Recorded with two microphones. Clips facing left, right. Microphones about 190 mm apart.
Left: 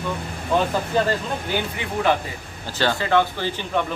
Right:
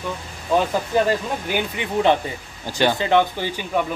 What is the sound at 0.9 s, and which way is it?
A man's voice, 15° right (ahead or behind).